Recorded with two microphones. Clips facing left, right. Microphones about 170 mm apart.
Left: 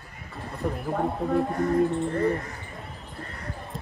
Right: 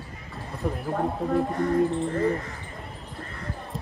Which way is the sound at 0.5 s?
Centre (ahead or behind).